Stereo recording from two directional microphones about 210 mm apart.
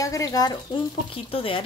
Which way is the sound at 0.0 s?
15° left (ahead or behind).